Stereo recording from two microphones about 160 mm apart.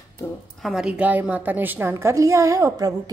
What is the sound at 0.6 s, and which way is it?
A woman's voice, centre (ahead or behind).